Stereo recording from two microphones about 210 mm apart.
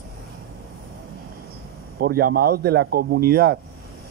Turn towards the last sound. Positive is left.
turn(degrees=-50)  # may be behind; listen again after turning